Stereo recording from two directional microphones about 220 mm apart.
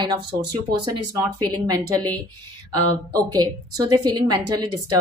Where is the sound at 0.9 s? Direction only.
90° right.